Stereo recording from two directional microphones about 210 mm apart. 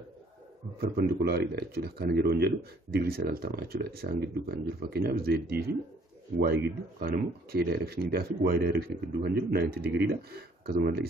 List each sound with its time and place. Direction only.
0.7 s speech: 45° right (ahead or behind)